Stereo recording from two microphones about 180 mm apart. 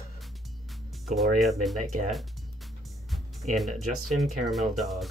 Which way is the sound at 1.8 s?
45° right (ahead or behind).